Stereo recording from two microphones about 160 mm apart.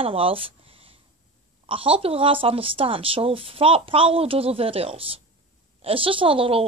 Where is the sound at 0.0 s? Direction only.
35° right (ahead or behind).